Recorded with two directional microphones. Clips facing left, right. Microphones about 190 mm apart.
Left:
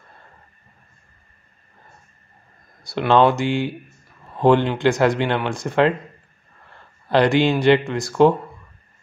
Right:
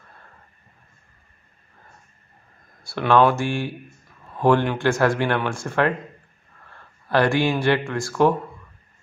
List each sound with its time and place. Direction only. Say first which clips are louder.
2.8 s speech: left 1 dB; 20° left (ahead or behind)
7.1 s speech: left 3 dB; 20° left (ahead or behind)